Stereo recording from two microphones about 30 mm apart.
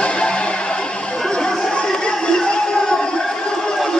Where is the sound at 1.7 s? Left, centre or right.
Left.